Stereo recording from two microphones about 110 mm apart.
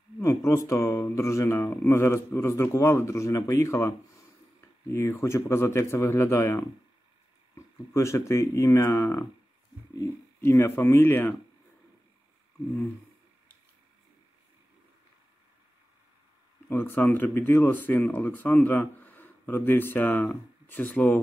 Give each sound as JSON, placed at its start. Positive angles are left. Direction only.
{"t": 0.2, "sound": "a man's voice", "side_deg": 25}
{"t": 10.4, "sound": "a man's voice", "side_deg": 20}
{"t": 16.6, "sound": "speech", "side_deg": 20}